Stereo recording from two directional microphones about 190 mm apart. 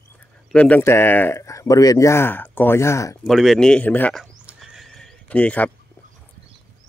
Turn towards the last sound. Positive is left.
turn(degrees=5)  # may be behind; listen again after turning